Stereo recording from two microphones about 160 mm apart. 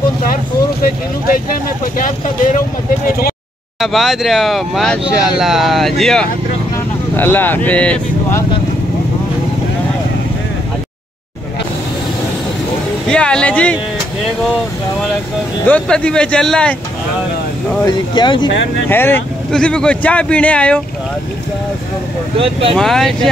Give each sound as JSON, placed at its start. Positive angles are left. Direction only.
{"t": 2.0, "sound": "speech", "side_deg": 55}
{"t": 3.8, "sound": "speech", "side_deg": 0}
{"t": 13.1, "sound": "speech", "side_deg": 5}
{"t": 15.6, "sound": "speech", "side_deg": 10}
{"t": 17.8, "sound": "speech", "side_deg": 30}
{"t": 18.9, "sound": "speech", "side_deg": 15}
{"t": 22.4, "sound": "speech", "side_deg": -35}
{"t": 22.8, "sound": "speech", "side_deg": 5}